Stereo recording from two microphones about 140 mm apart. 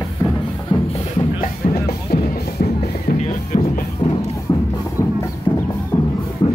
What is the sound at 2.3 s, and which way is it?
Music, 90° left.